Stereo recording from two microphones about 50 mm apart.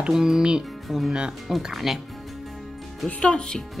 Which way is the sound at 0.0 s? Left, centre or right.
Centre.